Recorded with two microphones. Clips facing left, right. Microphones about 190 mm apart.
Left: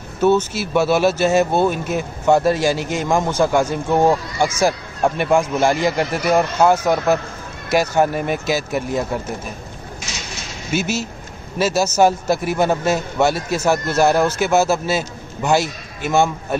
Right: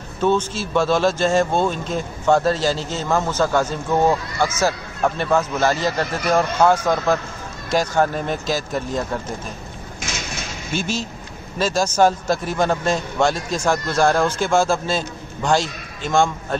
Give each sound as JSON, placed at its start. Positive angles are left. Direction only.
{"t": 0.2, "sound": "speech", "side_deg": 10}
{"t": 10.7, "sound": "speech", "side_deg": 5}